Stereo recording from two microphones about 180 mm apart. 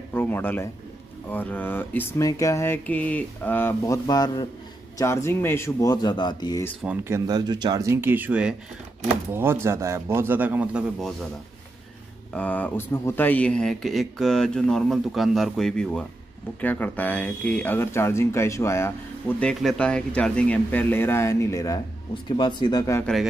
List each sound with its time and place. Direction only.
0.1 s a man's voice: 10° left (ahead or behind)
7.1 s speech: 20° right (ahead or behind); by 11.1 s 5° right (ahead or behind)
12.3 s speech: 10° left (ahead or behind)